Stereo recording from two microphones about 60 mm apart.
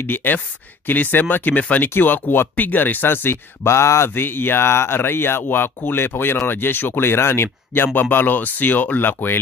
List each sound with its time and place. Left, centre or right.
0.0 s speech: left
4.1 s speech: left